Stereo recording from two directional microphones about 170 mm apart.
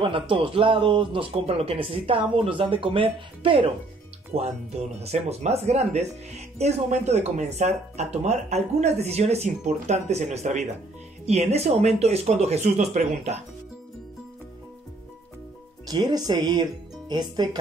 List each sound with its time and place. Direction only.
0.0 s speech: 30° right (ahead or behind)
15.9 s speech: 25° right (ahead or behind)